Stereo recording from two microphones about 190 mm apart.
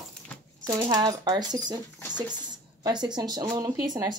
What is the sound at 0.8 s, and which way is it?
Speech, 20° right (ahead or behind).